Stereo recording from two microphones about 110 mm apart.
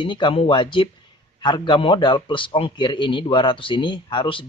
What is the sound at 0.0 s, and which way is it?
A man's voice, 45° left (ahead or behind).